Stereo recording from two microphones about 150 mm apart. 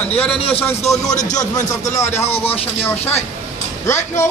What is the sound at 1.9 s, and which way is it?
Speech, 50° left (ahead or behind).